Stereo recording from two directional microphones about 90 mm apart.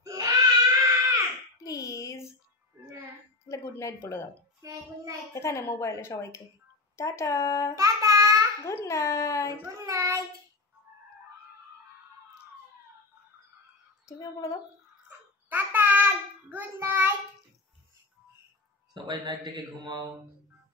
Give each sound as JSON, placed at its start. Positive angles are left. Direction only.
{"t": 0.0, "sound": "screaming", "side_deg": -40}
{"t": 1.6, "sound": "a sound", "side_deg": 35}
{"t": 2.8, "sound": "music", "side_deg": -30}
{"t": 3.4, "sound": "speech", "side_deg": 35}
{"t": 4.6, "sound": "a child's voice", "side_deg": -40}
{"t": 5.3, "sound": "a woman's voice", "side_deg": 30}
{"t": 7.7, "sound": "child singing", "side_deg": -40}
{"t": 8.8, "sound": "a woman's voice", "side_deg": 35}
{"t": 9.7, "sound": "child singing", "side_deg": -35}
{"t": 14.0, "sound": "a woman's voice", "side_deg": 40}
{"t": 15.0, "sound": "child singing", "side_deg": -20}
{"t": 18.9, "sound": "speech", "side_deg": -60}